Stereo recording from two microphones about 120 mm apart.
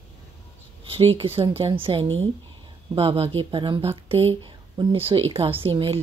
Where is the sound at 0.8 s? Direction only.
50° right (ahead or behind).